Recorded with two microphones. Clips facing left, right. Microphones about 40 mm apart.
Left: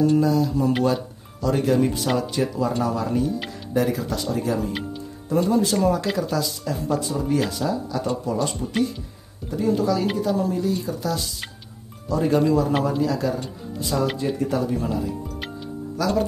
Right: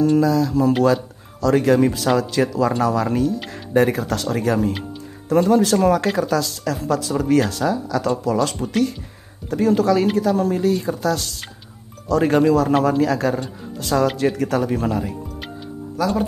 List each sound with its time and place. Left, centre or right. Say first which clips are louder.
0.2 s speech: right 3 dB; right
3.7 s speech: right 5 dB; right
9.5 s speech: right 5 dB; right
12.1 s speech: right 4 dB; right
12.8 s speech: right 5 dB; right
16.0 s speech: right 2 dB; centre